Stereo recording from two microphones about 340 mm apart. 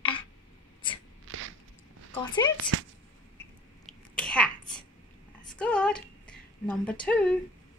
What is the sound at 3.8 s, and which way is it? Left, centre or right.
Sneeze, centre.